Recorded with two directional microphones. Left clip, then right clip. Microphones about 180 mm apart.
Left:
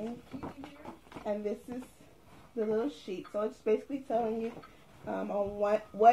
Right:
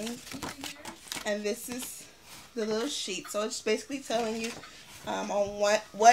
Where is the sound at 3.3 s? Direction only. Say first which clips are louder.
Even; 30° right (ahead or behind).